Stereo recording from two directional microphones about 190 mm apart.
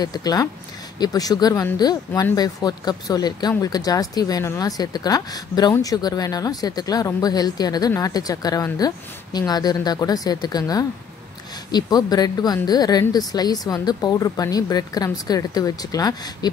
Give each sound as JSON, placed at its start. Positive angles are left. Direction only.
{"t": 0.0, "sound": "speech", "side_deg": 20}